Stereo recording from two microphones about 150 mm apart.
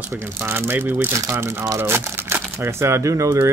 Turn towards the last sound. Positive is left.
turn(degrees=-20)  # may be behind; listen again after turning